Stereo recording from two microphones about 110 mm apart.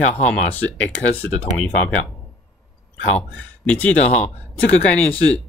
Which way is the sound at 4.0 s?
90° left.